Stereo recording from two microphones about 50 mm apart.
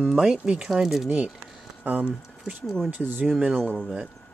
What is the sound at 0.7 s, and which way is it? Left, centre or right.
Speech, centre.